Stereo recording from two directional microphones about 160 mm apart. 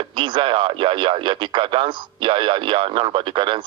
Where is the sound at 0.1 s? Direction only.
30° right (ahead or behind).